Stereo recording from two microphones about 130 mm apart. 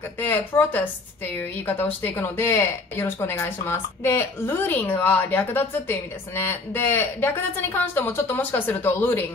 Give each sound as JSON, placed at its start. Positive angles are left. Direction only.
{"t": 0.2, "sound": "a woman's voice", "side_deg": 15}